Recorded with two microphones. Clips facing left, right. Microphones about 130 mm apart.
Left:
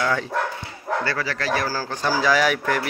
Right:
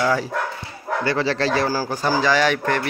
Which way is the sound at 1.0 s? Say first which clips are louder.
Right 9 dB; 20° right (ahead or behind).